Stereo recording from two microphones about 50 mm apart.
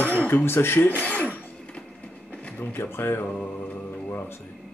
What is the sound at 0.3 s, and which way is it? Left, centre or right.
Speech, left.